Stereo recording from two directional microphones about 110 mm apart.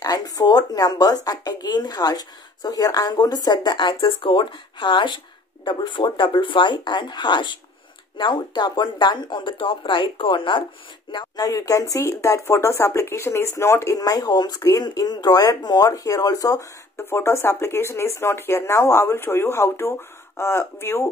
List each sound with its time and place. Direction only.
0.0 s speech: 35° left (ahead or behind)